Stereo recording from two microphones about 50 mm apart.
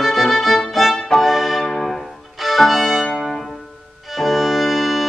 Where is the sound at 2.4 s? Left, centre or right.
Centre.